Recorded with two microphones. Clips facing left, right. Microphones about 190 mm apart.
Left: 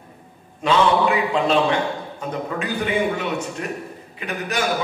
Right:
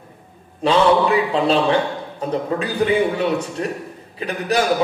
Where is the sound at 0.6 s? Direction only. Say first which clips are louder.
Right 3 dB; 35° right (ahead or behind).